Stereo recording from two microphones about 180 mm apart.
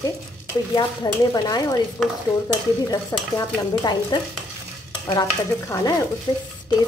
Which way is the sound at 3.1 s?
20° left (ahead or behind).